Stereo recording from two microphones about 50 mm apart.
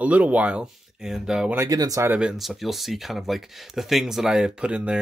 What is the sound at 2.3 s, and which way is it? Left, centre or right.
Speech, centre.